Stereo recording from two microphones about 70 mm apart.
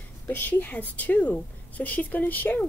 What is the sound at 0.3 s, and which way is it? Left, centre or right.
A woman's voice, left.